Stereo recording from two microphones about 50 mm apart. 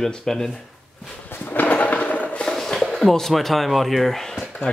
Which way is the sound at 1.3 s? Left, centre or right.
Left.